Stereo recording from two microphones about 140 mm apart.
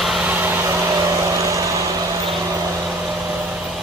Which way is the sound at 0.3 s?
15° right (ahead or behind).